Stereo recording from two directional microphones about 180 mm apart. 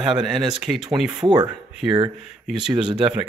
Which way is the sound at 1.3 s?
25° right (ahead or behind).